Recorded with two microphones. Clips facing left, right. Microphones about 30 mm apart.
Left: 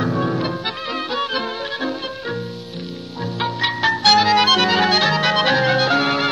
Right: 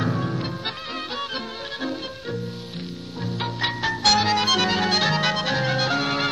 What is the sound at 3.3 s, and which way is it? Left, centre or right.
Music, centre.